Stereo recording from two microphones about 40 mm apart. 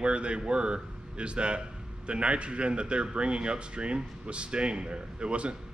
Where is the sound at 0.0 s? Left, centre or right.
Right.